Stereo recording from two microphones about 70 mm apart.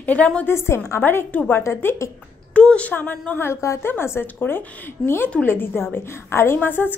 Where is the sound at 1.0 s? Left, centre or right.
Left.